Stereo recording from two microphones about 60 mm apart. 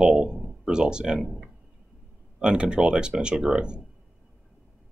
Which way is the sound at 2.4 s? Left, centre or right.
Centre.